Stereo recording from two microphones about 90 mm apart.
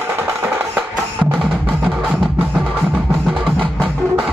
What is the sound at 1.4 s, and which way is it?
Music, 5° right (ahead or behind).